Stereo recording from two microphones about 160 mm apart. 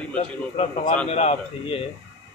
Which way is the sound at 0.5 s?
45° left (ahead or behind).